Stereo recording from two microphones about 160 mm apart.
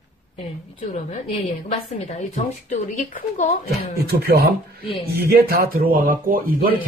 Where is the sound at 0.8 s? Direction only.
50° left (ahead or behind).